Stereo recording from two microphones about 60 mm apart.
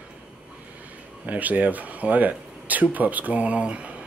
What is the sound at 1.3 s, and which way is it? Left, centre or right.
Speech, right.